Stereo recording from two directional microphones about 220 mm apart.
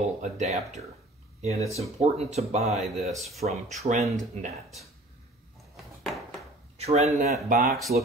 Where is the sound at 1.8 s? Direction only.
30° right (ahead or behind).